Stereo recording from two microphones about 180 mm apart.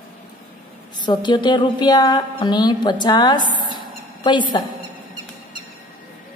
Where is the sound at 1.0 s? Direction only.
25° left (ahead or behind).